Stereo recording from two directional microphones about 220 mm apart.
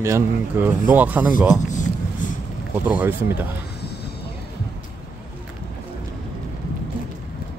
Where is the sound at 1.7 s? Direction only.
35° left (ahead or behind).